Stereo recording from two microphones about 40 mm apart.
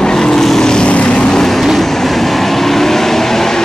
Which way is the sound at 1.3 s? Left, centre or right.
Centre.